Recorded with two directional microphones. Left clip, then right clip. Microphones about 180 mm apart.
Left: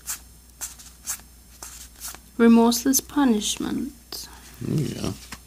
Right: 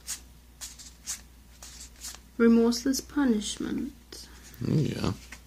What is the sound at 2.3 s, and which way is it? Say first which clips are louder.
Speech: left 5 dB; 45° left (ahead or behind).